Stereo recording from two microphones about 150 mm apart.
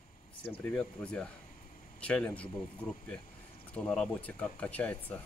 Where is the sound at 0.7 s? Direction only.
5° left (ahead or behind).